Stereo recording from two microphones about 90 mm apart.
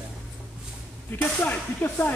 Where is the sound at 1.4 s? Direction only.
20° left (ahead or behind).